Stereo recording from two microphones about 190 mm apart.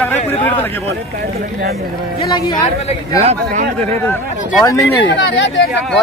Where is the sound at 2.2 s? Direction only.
20° left (ahead or behind).